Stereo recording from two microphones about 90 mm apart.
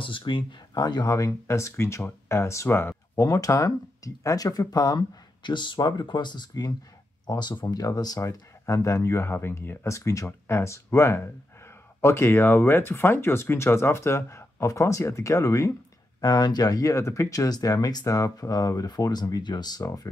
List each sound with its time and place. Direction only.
0.0 s speech: 65° left (ahead or behind); by 5.0 s 45° left (ahead or behind)
5.4 s speech: 60° left (ahead or behind); by 15.7 s 35° left (ahead or behind)
16.2 s speech: 45° left (ahead or behind)